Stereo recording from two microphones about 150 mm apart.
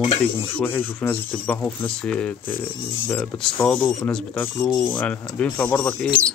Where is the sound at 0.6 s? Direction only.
15° left (ahead or behind).